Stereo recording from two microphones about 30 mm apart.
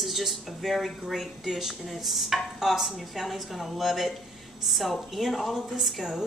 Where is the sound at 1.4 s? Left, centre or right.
Centre.